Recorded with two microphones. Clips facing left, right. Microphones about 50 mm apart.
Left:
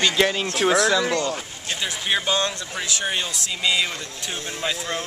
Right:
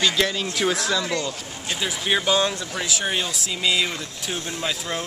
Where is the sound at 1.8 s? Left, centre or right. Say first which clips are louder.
Right 1 dB; centre.